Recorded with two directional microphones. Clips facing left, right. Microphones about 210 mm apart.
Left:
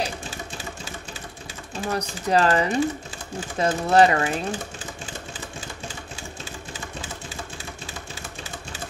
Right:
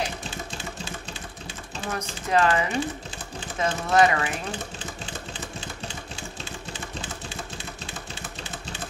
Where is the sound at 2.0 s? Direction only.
35° left (ahead or behind).